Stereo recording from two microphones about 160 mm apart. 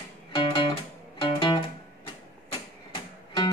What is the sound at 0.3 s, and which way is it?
Music, 35° left (ahead or behind).